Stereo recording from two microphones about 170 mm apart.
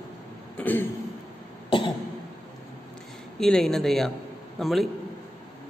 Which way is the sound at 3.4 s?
5° left (ahead or behind).